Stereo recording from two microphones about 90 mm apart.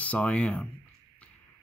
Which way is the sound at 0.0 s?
15° left (ahead or behind).